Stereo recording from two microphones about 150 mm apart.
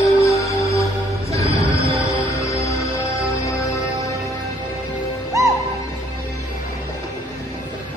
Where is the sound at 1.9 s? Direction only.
20° left (ahead or behind).